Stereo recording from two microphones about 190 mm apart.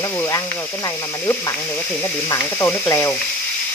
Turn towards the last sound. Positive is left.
turn(degrees=15)  # may be behind; listen again after turning